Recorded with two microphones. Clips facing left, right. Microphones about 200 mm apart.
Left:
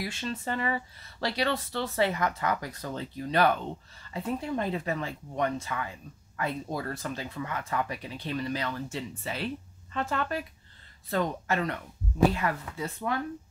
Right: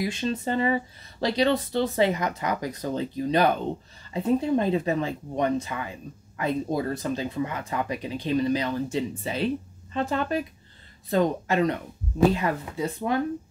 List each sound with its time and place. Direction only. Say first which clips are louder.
0.0 s speech: right 7 dB; 15° right (ahead or behind)